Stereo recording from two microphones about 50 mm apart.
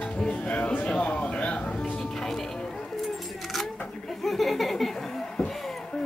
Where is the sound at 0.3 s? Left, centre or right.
Left.